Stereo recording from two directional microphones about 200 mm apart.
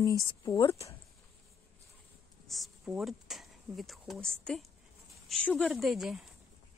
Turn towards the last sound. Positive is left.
turn(degrees=0)  # may be behind; listen again after turning